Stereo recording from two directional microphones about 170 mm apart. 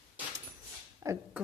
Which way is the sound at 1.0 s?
15° right (ahead or behind).